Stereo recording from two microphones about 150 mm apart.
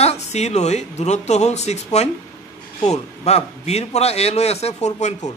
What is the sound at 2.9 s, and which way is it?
Speech, 45° left (ahead or behind).